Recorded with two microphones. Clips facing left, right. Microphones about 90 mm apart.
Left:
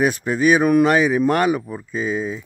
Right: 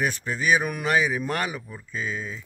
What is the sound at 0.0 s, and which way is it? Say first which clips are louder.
Speech: left 8 dB; 45° left (ahead or behind).